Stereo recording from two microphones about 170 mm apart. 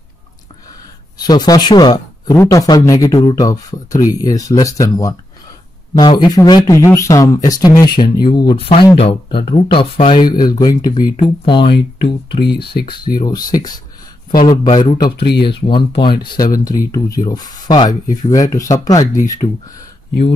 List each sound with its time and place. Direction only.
1.1 s speech: 25° left (ahead or behind)
11.6 s speech: 85° left
12.5 s speech: 70° left (ahead or behind)
13.2 s speech: 25° left (ahead or behind)